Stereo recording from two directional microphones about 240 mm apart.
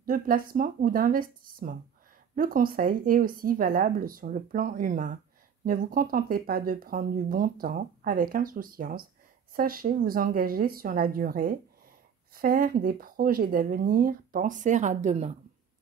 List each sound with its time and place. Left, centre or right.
0.0 s speech: right